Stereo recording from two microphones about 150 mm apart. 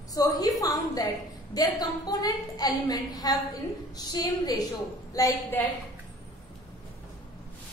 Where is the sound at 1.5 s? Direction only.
25° left (ahead or behind).